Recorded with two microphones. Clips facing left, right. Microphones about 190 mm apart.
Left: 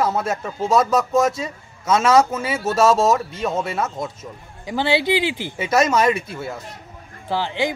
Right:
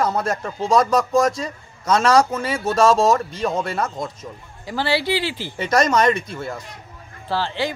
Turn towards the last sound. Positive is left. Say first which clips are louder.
# left 1 dB
turn(degrees=15)  # may be behind; listen again after turning